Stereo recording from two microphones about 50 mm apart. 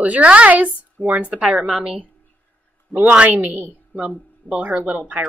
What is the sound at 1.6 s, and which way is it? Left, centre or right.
Speech, centre.